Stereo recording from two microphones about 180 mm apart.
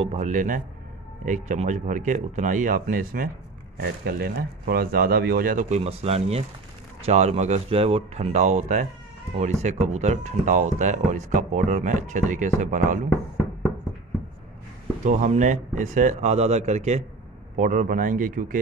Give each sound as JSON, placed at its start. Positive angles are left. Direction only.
{"t": 0.0, "sound": "speech", "side_deg": -35}
{"t": 5.8, "sound": "speech", "side_deg": -35}
{"t": 15.0, "sound": "speech", "side_deg": -45}